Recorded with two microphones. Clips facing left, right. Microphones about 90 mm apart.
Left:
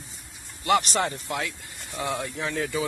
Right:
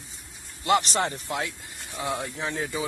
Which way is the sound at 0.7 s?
25° right (ahead or behind).